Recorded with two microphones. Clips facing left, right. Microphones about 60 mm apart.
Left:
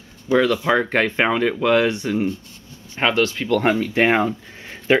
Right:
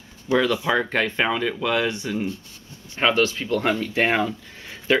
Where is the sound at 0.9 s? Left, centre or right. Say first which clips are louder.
Left 4 dB; left.